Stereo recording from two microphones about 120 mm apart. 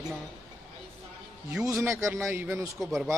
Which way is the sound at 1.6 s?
25° right (ahead or behind).